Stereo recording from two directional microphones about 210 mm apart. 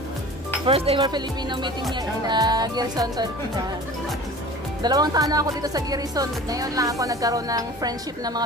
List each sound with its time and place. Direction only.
0.7 s speech: 25° right (ahead or behind)
4.8 s speech: 20° right (ahead or behind)